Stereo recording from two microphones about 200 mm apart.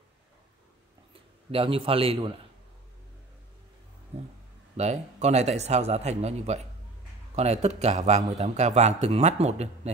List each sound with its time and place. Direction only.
1.5 s a man's voice: 25° right (ahead or behind)
4.1 s a sound: 30° right (ahead or behind)
4.7 s speech: 35° right (ahead or behind)